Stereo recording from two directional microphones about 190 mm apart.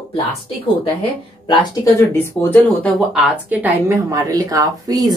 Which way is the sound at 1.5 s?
25° left (ahead or behind).